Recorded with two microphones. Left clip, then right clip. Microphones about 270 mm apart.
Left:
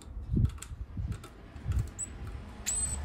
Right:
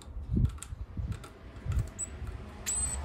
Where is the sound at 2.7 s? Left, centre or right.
Centre.